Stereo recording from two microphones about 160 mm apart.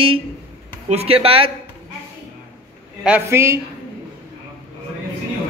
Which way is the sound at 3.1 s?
15° right (ahead or behind).